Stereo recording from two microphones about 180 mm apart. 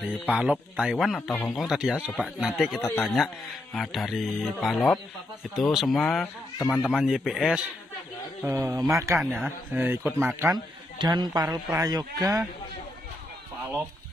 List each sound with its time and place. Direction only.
0.3 s speech: 5° right (ahead or behind)
8.5 s speech: 15° right (ahead or behind)
9.2 s speech: centre (ahead or behind); by 12.4 s 20° right (ahead or behind)